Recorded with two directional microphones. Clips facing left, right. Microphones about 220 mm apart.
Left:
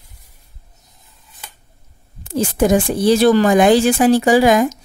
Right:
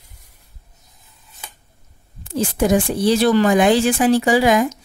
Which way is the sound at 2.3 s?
45° left (ahead or behind).